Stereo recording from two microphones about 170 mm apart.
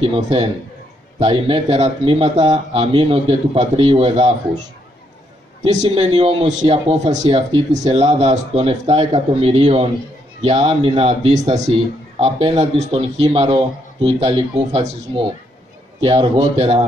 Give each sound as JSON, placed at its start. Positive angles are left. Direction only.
{"t": 0.0, "sound": "a man's voice", "side_deg": -35}
{"t": 5.6, "sound": "a man's voice", "side_deg": -35}